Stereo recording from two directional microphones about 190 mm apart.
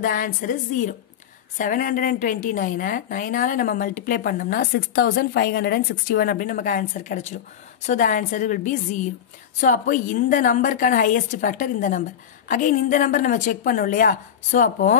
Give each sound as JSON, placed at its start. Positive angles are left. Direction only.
{"t": 0.0, "sound": "a woman's voice", "side_deg": 45}